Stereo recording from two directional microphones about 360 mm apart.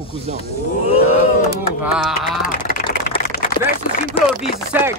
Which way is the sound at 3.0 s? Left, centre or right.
Left.